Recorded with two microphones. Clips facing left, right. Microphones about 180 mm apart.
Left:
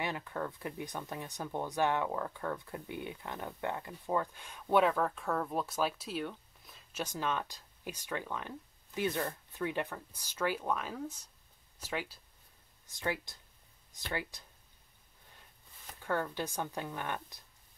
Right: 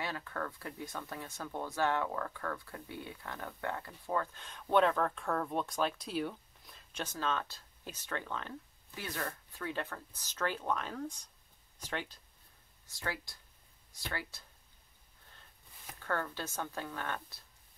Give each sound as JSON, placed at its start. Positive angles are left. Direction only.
{"t": 0.0, "sound": "speech", "side_deg": 20}
{"t": 12.8, "sound": "speech", "side_deg": 20}
{"t": 16.0, "sound": "speech", "side_deg": 15}